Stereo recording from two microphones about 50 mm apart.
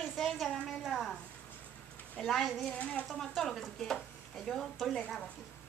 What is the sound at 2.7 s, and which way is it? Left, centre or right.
Speech, left.